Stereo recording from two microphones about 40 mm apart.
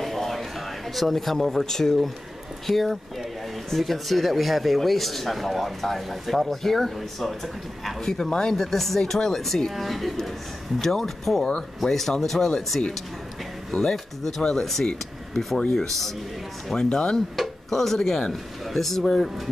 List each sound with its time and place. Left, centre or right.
0.0 s a sound: centre
2.6 s speech: centre
16.7 s speech: left
17.4 s speech: centre